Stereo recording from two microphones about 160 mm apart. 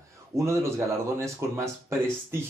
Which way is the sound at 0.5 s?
15° right (ahead or behind).